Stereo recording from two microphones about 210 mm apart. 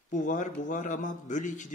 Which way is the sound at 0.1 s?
40° left (ahead or behind).